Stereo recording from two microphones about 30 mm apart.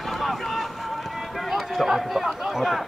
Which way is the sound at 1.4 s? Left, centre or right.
Centre.